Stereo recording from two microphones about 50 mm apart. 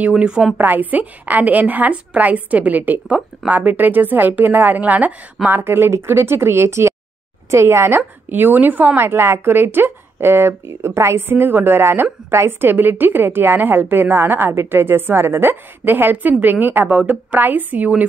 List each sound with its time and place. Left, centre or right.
0.1 s a woman's voice: centre
0.6 s a woman's voice: right
5.5 s speech: right
8.3 s a woman's voice: right
8.9 s a woman's voice: right